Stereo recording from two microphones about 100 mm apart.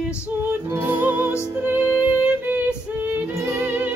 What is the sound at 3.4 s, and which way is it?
Music, 15° right (ahead or behind).